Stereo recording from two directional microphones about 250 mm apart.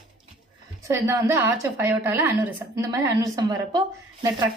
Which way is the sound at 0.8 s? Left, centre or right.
Centre.